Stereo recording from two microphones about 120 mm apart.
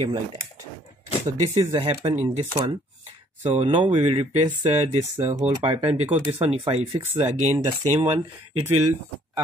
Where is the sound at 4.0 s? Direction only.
55° right (ahead or behind).